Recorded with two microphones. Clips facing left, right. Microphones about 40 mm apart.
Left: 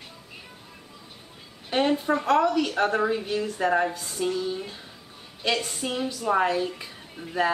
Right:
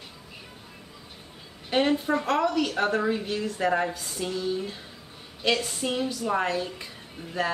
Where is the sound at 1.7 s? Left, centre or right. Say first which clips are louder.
Even; centre.